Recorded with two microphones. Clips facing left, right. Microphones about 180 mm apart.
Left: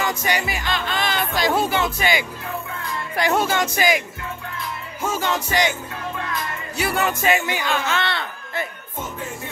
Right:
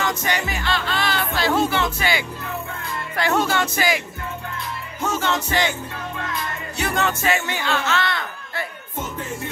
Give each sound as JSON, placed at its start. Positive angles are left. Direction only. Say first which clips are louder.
{"t": 0.0, "sound": "music", "louder": "left 1 dB", "side_deg": 10}
{"t": 5.1, "sound": "music", "louder": "even", "side_deg": 10}
{"t": 6.8, "sound": "music", "louder": "left 1 dB", "side_deg": 10}
{"t": 8.0, "sound": "a sound", "louder": "even", "side_deg": 25}